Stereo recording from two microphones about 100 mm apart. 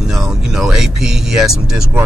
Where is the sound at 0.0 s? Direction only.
5° right (ahead or behind).